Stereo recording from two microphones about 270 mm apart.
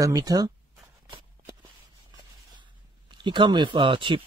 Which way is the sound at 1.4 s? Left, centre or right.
Centre.